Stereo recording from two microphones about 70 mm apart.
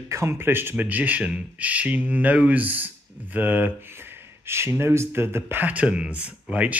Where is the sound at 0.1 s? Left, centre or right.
Right.